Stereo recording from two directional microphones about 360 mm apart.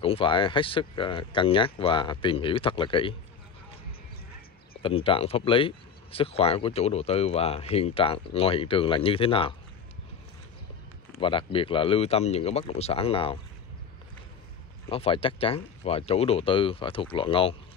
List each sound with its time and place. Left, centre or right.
0.0 s speech: centre
4.8 s speech: centre
11.1 s speech: centre
14.9 s speech: centre